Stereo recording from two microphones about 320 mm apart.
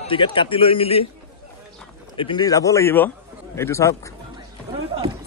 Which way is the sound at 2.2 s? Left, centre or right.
Centre.